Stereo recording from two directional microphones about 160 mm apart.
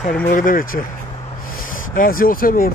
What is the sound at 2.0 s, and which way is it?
Speech, 60° left (ahead or behind).